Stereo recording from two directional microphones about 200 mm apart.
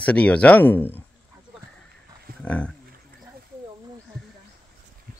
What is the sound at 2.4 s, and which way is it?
Speech, 5° left (ahead or behind).